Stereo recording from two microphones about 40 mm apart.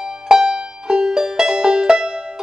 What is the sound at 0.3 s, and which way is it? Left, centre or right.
Music, right.